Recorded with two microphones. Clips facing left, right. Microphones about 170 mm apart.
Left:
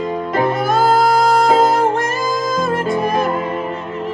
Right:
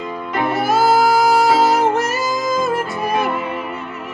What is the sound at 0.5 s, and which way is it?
Music, 5° right (ahead or behind).